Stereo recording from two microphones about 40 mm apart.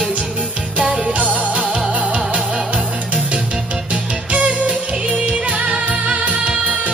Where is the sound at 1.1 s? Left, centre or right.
Right.